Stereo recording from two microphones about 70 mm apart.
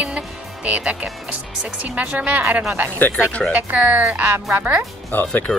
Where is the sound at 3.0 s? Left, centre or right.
Left.